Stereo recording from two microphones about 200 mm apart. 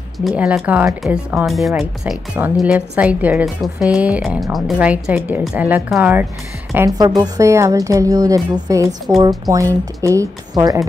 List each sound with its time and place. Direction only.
0.4 s a woman's voice: 5° right (ahead or behind)